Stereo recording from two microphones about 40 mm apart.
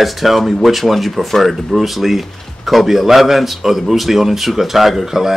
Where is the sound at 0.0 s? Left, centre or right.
Centre.